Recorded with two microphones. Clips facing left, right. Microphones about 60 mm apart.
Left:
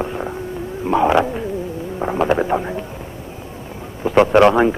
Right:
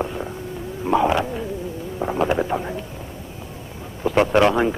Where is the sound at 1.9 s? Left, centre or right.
Left.